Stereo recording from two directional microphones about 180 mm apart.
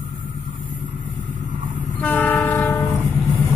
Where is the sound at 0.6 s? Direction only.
10° right (ahead or behind).